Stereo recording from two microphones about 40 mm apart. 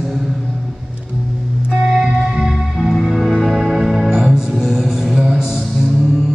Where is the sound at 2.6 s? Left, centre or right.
Centre.